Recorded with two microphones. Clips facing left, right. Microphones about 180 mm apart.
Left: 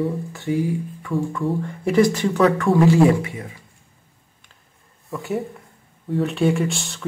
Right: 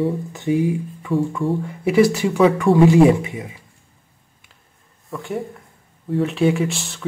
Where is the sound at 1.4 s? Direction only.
5° right (ahead or behind).